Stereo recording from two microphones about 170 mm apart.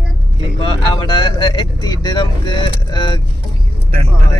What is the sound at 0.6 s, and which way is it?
Speech, 30° left (ahead or behind).